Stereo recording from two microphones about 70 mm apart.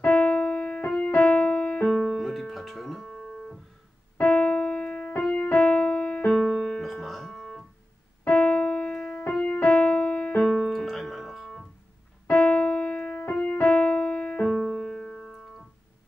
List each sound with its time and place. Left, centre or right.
0.0 s keyboard: left
1.3 s music: left
1.9 s music: centre
4.2 s keyboard: centre
5.6 s music: left
6.5 s piano: centre
8.3 s keyboard: centre
9.3 s music: left
10.4 s piano: centre
12.3 s keyboard: centre
13.7 s music: centre
14.5 s music: centre